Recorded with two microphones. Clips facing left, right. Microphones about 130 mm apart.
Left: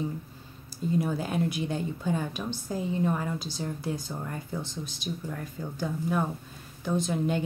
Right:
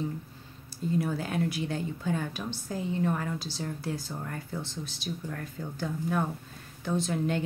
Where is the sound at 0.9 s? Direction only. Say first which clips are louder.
Left 1 dB; 20° left (ahead or behind).